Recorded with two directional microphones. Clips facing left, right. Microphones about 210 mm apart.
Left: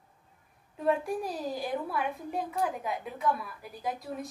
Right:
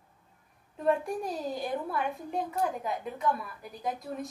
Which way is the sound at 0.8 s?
Centre (ahead or behind).